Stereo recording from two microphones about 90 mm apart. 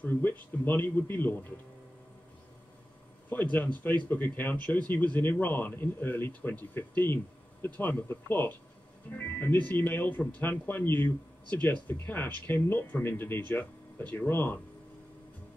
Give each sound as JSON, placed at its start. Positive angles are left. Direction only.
{"t": 0.0, "sound": "speech", "side_deg": 20}
{"t": 3.3, "sound": "speech", "side_deg": 20}